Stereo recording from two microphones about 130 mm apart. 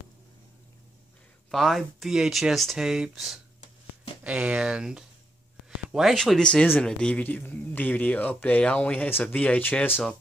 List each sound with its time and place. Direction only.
1.5 s speech: centre (ahead or behind)